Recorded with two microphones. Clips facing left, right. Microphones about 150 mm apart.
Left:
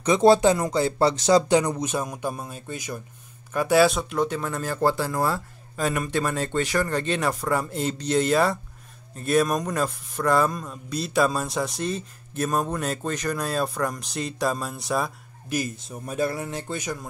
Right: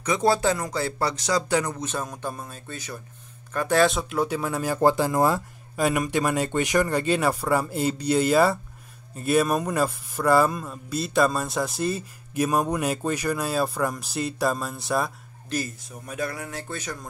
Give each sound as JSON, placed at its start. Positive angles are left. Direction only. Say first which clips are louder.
{"t": 0.0, "sound": "speech", "louder": "left 5 dB", "side_deg": 25}
{"t": 15.5, "sound": "speech", "louder": "left 1 dB", "side_deg": 10}
{"t": 16.1, "sound": "speech", "louder": "left 4 dB", "side_deg": 30}